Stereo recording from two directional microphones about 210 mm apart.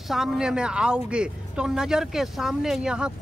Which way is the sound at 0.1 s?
Centre (ahead or behind).